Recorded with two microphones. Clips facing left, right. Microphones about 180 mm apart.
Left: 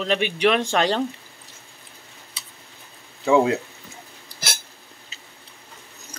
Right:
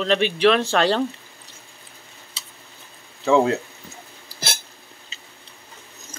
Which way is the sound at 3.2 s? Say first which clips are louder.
Even; 15° left (ahead or behind).